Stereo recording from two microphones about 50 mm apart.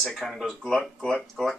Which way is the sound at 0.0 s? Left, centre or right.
Centre.